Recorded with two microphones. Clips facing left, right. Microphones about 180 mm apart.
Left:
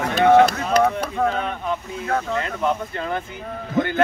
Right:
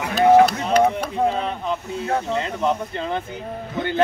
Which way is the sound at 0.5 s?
25° right (ahead or behind).